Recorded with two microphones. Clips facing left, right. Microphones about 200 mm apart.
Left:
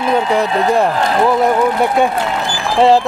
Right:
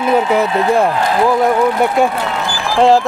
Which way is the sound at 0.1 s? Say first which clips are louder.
Right 1 dB; 5° right (ahead or behind).